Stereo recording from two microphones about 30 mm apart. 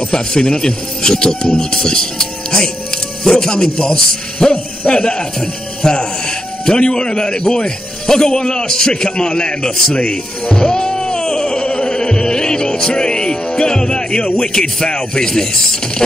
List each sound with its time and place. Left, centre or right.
0.1 s a man's voice: left
9.9 s speech: left
10.6 s music: left